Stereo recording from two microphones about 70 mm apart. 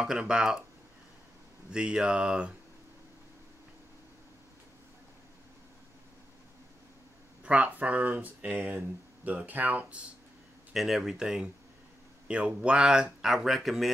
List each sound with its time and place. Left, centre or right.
0.0 s speech: centre
1.7 s speech: centre
7.4 s speech: centre
10.7 s speech: centre